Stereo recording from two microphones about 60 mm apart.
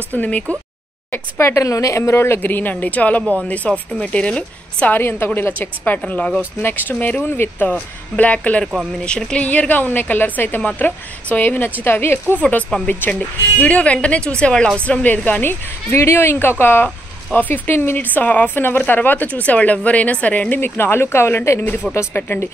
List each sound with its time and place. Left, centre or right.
0.1 s speech: left
1.4 s a woman's voice: left; by 4.9 s centre
4.9 s a woman's voice: left
12.4 s a woman's voice: left
13.6 s a woman's voice: left
15.9 s a woman's voice: left